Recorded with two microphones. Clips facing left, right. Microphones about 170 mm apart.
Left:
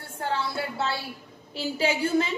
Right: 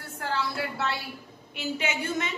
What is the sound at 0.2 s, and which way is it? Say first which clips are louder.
A woman's voice: left 1 dB; 25° left (ahead or behind).